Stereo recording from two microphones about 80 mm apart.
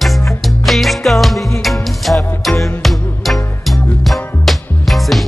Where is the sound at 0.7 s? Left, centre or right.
Centre.